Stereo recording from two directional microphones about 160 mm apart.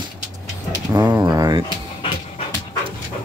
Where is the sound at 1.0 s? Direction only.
10° right (ahead or behind).